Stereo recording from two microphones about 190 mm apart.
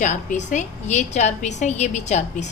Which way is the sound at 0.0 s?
40° left (ahead or behind).